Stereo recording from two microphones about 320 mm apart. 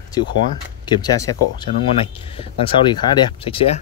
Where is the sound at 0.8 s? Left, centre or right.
Centre.